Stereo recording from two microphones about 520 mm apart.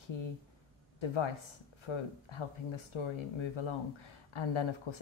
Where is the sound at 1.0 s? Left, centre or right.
Left.